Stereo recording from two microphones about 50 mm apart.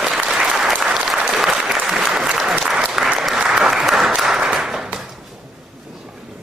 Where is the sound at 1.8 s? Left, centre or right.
Centre.